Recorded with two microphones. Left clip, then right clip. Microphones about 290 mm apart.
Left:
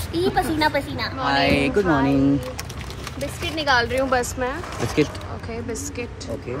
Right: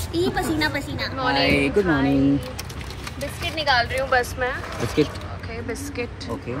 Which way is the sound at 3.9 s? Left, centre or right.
Centre.